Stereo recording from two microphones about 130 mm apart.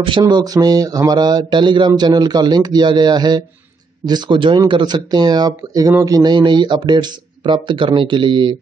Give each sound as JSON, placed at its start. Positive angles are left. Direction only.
{"t": 0.0, "sound": "speech", "side_deg": -35}